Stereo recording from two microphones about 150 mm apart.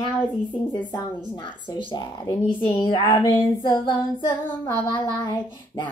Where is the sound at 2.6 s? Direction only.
30° left (ahead or behind).